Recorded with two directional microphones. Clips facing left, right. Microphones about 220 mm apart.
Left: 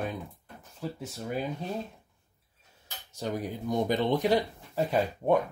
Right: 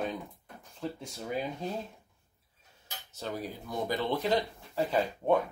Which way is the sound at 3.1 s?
15° left (ahead or behind).